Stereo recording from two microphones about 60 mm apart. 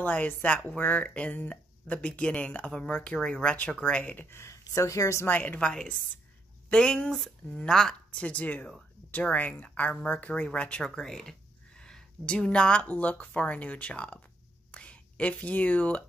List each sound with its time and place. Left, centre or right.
0.0 s speech: left
4.3 s speech: left
4.7 s a woman's voice: left
5.2 s speech: left
5.6 s speech: centre
8.1 s speech: left
11.0 s speech: centre
14.7 s whispering: left